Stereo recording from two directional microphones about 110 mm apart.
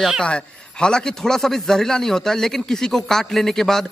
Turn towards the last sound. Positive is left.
turn(degrees=5)  # may be behind; listen again after turning